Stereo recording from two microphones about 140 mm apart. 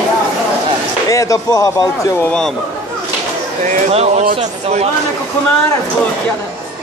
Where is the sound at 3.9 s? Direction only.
50° right (ahead or behind).